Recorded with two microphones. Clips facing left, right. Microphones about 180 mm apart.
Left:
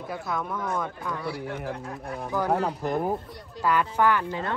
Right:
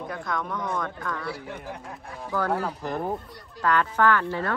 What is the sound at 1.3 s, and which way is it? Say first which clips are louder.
Speech: left 4 dB; 60° left (ahead or behind).